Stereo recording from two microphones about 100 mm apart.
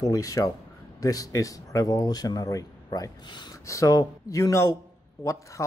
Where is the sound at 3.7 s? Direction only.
35° left (ahead or behind).